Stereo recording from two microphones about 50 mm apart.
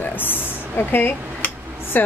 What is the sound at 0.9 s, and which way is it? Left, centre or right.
Dishes, left.